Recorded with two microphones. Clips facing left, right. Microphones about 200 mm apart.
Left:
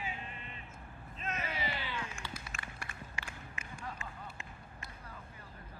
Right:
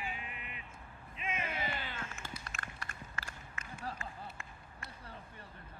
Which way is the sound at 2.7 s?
10° left (ahead or behind).